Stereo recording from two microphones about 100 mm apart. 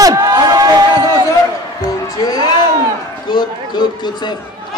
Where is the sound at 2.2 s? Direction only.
45° left (ahead or behind).